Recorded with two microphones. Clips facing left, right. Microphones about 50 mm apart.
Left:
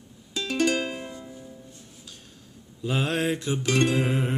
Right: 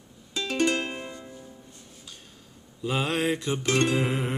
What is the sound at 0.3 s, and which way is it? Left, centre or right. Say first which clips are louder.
Music: left 1 dB; centre.